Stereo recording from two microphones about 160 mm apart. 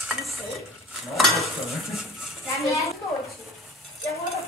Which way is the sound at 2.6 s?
20° left (ahead or behind).